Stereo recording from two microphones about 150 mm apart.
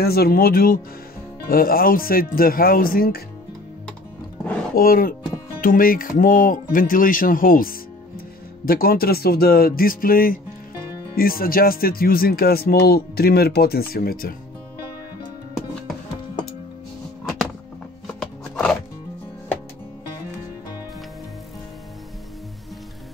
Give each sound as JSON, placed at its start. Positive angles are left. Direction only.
{"t": 0.0, "sound": "speech", "side_deg": 90}
{"t": 4.7, "sound": "speech", "side_deg": 75}
{"t": 8.6, "sound": "speech", "side_deg": 80}
{"t": 18.2, "sound": "music", "side_deg": 5}